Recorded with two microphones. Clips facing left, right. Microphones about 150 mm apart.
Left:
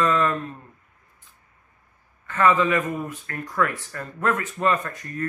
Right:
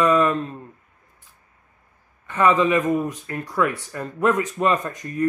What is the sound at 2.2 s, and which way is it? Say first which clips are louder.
A man's voice: right 2 dB; 15° right (ahead or behind).